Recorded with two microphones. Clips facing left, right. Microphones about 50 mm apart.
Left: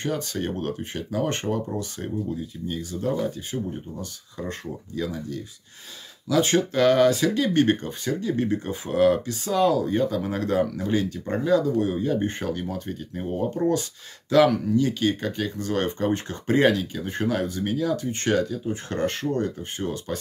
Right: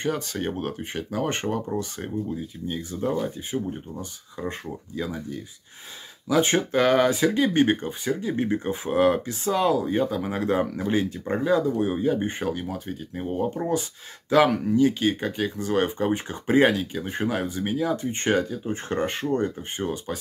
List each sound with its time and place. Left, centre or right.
0.0 s speech: centre
2.7 s speech: right